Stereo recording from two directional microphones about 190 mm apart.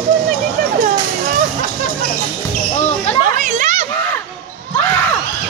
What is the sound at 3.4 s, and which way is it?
Children playing, 40° right (ahead or behind).